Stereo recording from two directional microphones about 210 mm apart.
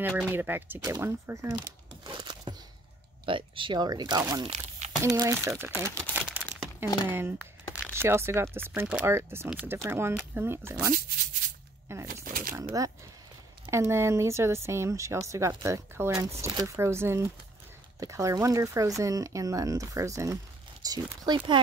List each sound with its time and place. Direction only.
0.0 s speech: 10° right (ahead or behind)
2.0 s a sound: 20° right (ahead or behind)
3.3 s speech: 25° right (ahead or behind)
4.5 s a sound: 35° right (ahead or behind)
5.0 s speech: 15° right (ahead or behind)
6.1 s crumpling: 5° right (ahead or behind)
7.1 s speech: 10° right (ahead or behind)
12.1 s shuffling cards: 40° right (ahead or behind)
12.8 s speech: 15° right (ahead or behind)